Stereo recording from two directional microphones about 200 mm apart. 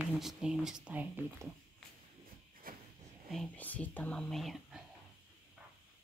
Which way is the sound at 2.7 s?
45° right (ahead or behind).